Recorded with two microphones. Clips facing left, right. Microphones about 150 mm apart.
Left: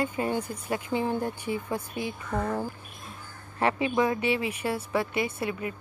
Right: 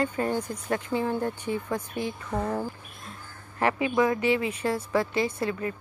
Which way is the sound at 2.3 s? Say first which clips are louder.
Even; 15° right (ahead or behind).